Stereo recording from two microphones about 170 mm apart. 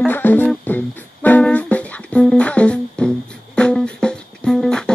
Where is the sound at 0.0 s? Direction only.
10° left (ahead or behind).